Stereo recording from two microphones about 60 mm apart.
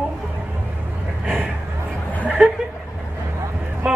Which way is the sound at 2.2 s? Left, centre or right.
Centre.